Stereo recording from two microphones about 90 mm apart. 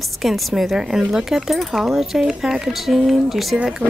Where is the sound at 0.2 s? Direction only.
Centre (ahead or behind).